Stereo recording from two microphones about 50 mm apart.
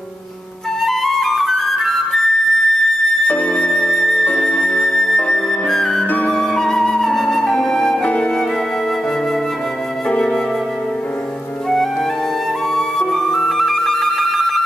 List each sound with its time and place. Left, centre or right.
0.8 s flute: centre
3.3 s music: left
3.5 s music: centre
4.2 s flute: left
6.1 s flute: left
6.4 s flute: centre
8.0 s flute: left
10.0 s flute: centre
13.1 s music: centre